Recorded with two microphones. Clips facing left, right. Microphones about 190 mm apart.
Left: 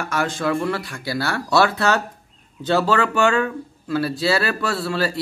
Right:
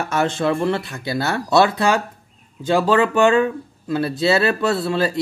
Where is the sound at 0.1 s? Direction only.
25° right (ahead or behind).